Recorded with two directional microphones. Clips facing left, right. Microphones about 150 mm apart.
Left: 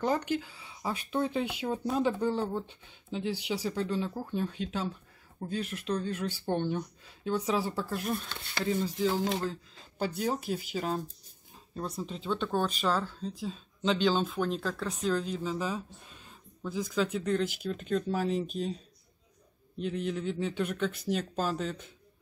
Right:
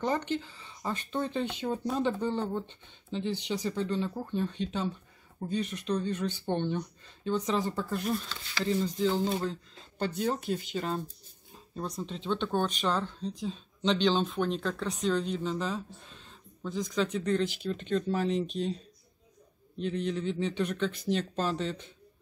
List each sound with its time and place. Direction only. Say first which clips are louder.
0.0 s speech: left 1 dB; 10° left (ahead or behind)
8.3 s speech: right 1 dB; 55° left (ahead or behind)
8.6 s speech: right 1 dB; 5° left (ahead or behind)
19.8 s speech: right 1 dB; 5° left (ahead or behind)